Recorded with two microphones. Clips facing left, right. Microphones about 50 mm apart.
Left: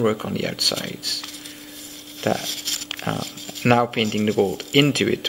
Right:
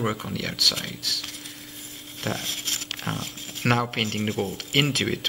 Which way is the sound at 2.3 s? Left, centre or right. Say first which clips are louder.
Left 4 dB; right.